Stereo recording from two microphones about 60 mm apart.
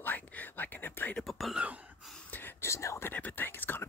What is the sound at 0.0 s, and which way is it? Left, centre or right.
Whispering, left.